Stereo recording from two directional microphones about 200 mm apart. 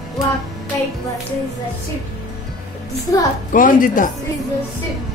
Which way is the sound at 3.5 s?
45° left (ahead or behind).